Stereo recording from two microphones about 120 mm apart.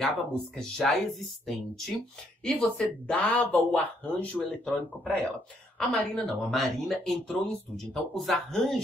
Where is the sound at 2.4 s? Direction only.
5° left (ahead or behind).